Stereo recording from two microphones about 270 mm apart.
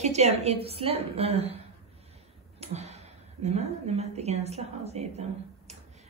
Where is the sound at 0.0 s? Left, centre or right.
Right.